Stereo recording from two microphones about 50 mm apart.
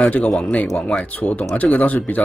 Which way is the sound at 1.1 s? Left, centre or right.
Left.